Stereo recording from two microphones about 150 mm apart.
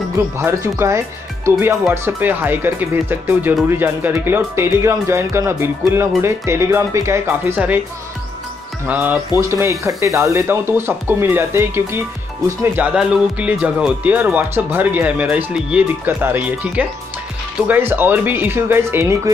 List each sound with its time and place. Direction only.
0.4 s speech: 15° right (ahead or behind)
8.8 s speech: 10° right (ahead or behind)